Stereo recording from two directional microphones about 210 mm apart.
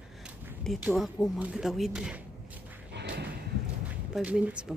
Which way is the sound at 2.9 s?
55° right (ahead or behind).